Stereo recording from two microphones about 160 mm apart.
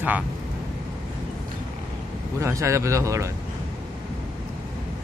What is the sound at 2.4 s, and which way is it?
Speech, 20° right (ahead or behind).